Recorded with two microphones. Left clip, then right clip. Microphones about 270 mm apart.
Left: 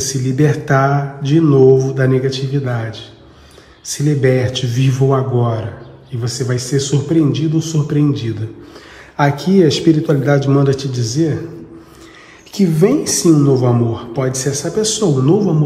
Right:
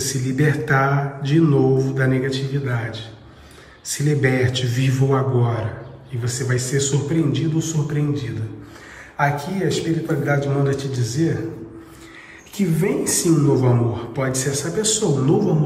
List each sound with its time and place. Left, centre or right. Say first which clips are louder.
0.0 s mantra: left 5 dB; centre
12.5 s mantra: left 8 dB; centre